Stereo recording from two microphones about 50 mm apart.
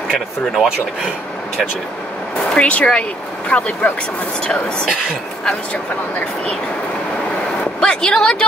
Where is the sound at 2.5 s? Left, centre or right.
Left.